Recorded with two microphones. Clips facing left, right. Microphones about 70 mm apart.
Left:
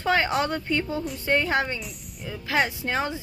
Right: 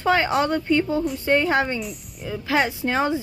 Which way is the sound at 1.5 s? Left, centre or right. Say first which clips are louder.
Right 4 dB; right.